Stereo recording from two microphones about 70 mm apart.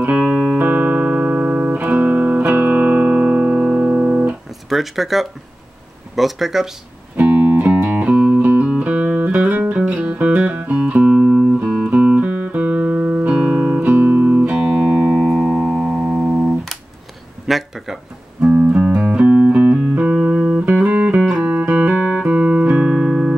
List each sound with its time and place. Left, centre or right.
0.1 s music: centre
4.6 s speech: centre
7.2 s music: right
13.3 s guitar: centre
13.8 s music: right
17.5 s a sound: centre
18.4 s music: centre